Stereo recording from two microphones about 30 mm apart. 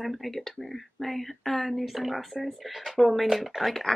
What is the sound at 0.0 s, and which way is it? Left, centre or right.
Speech, centre.